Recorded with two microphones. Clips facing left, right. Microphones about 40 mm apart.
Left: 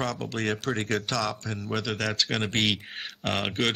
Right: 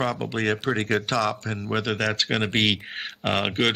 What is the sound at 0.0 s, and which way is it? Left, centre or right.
Speech, centre.